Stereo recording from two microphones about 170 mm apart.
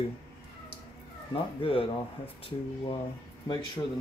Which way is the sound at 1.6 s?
30° left (ahead or behind).